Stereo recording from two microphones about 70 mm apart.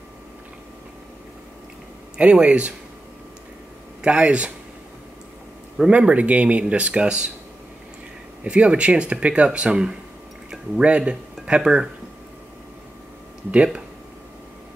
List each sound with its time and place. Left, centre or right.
2.1 s speech: centre
4.0 s speech: centre
5.9 s speech: centre
8.5 s speech: centre